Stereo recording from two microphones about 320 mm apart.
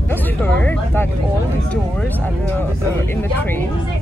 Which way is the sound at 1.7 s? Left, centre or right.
Centre.